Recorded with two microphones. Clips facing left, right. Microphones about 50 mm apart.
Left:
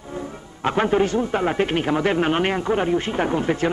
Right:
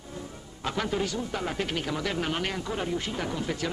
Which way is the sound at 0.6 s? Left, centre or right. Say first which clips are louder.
Left 10 dB; left.